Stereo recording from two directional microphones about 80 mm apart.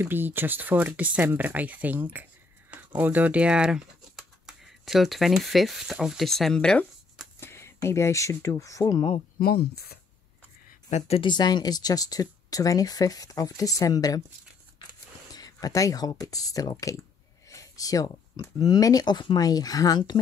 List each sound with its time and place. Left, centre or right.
0.0 s speech: right; by 6.9 s centre
7.3 s speech: left
11.2 s speech: left
15.3 s speech: left
17.5 s a sound: left
18.6 s speech: left